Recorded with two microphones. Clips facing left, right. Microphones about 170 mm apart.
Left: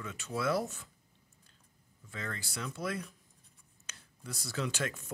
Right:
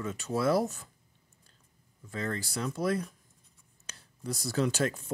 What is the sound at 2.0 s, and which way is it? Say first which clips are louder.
Speech: right 7 dB; 35° right (ahead or behind).